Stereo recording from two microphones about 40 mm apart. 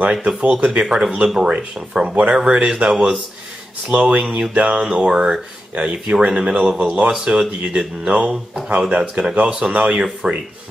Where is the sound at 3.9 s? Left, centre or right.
Right.